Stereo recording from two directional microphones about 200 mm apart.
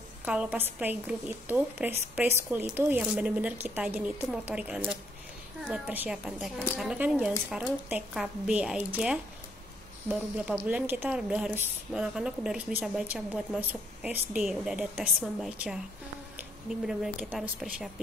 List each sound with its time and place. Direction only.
0.2 s a woman's voice: 5° right (ahead or behind)